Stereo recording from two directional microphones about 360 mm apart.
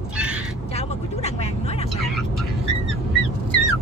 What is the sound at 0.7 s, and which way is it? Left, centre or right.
Vehicle, centre.